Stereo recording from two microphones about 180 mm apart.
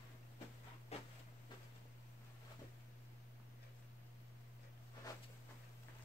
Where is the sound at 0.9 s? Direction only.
35° left (ahead or behind).